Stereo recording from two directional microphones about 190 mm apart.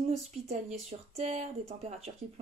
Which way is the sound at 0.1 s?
35° right (ahead or behind).